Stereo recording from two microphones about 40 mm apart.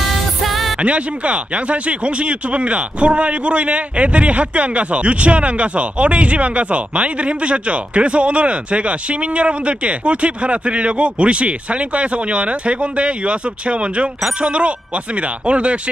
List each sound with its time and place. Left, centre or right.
0.4 s music: centre
0.7 s speech: right